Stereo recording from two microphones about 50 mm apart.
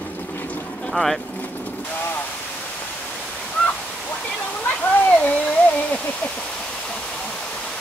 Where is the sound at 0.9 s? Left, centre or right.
Centre.